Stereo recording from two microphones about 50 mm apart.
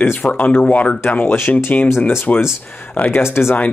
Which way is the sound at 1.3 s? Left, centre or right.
Left.